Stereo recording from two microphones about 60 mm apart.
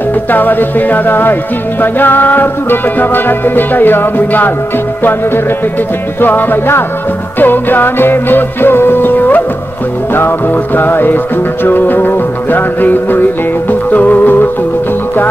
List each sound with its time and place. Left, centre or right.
0.3 s music: left
6.2 s music: left